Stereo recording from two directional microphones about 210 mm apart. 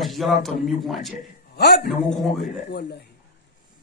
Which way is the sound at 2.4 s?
50° left (ahead or behind).